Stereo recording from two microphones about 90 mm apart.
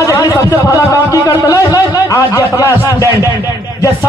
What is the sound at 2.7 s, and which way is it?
Speech, 35° right (ahead or behind).